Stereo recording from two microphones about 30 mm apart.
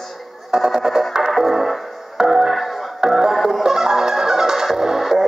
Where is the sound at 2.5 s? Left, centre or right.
Centre.